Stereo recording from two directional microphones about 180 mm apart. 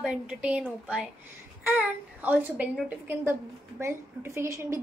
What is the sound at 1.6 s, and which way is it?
A woman's voice, 10° right (ahead or behind).